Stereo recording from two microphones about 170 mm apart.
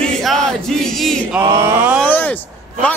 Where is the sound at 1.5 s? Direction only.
15° right (ahead or behind).